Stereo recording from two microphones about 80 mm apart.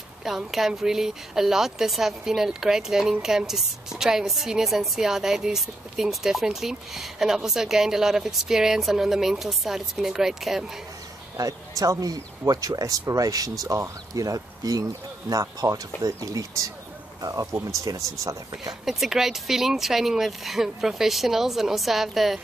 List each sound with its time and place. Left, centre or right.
0.2 s speech: centre
11.3 s speech: right
18.9 s speech: centre